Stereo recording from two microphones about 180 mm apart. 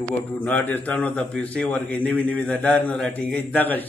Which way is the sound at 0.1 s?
10° left (ahead or behind).